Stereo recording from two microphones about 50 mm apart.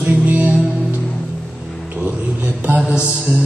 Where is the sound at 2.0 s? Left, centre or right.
Right.